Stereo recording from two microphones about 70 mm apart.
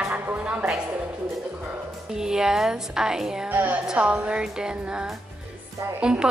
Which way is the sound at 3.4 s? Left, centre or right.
Right.